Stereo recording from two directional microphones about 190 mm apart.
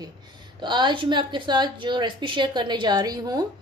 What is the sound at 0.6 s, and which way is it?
A woman's voice, 25° right (ahead or behind).